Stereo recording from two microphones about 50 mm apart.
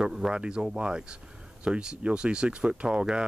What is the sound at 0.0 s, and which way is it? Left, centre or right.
Speech, centre.